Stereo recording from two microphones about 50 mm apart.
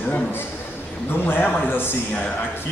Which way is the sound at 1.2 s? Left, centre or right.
Left.